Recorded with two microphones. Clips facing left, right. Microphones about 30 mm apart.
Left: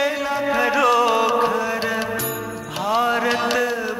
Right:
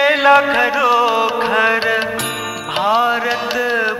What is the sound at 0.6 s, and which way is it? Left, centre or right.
Music, centre.